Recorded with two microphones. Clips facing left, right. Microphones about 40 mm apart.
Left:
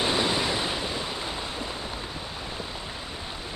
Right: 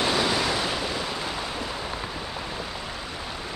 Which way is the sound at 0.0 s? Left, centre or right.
Left.